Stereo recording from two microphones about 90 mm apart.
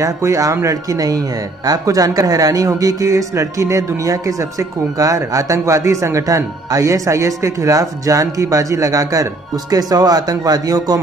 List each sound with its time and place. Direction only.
0.0 s a man's voice: 35° right (ahead or behind)